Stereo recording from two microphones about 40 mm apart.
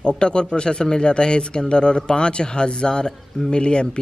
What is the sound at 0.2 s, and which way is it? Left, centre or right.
Speech, left.